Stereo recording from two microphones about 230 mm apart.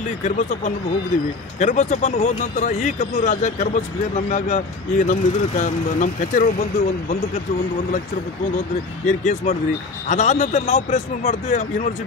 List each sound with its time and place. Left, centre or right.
0.2 s speech: left
9.0 s speech: left